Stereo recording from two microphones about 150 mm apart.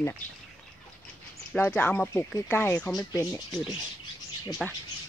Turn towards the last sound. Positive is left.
turn(degrees=0)  # may be behind; listen again after turning